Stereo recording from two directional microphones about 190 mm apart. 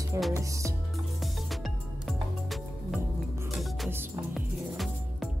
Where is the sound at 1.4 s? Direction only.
Centre (ahead or behind).